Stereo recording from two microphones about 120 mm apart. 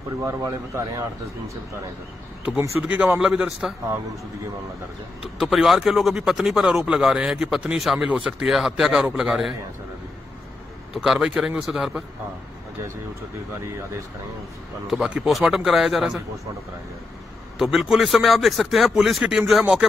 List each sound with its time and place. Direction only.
0.2 s speech: 25° right (ahead or behind)
2.8 s speech: 10° right (ahead or behind)
5.4 s a man's voice: centre (ahead or behind)
11.0 s a man's voice: 5° right (ahead or behind)
14.9 s a man's voice: 5° right (ahead or behind)
17.6 s a man's voice: centre (ahead or behind)